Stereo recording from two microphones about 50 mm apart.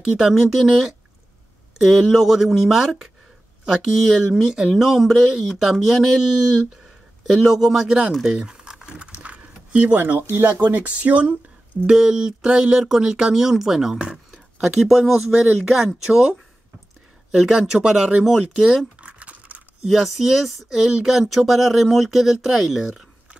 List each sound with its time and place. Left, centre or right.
0.0 s speech: centre
4.1 s speech: centre
8.3 s typing: centre
9.2 s a sound: right
9.9 s speech: right
11.8 s speech: centre
17.3 s speech: centre
18.9 s crumpling: right
19.9 s speech: centre